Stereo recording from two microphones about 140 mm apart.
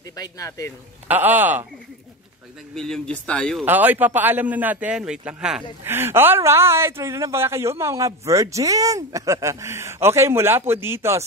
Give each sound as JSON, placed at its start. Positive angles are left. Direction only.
{"t": 0.1, "sound": "speech", "side_deg": 25}
{"t": 1.0, "sound": "a man's voice", "side_deg": -15}
{"t": 2.7, "sound": "speech", "side_deg": 5}
{"t": 3.6, "sound": "a man's voice", "side_deg": -15}
{"t": 5.9, "sound": "a woman's voice", "side_deg": -15}